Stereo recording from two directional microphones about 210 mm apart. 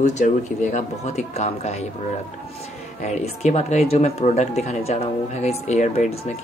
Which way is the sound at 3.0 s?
35° left (ahead or behind).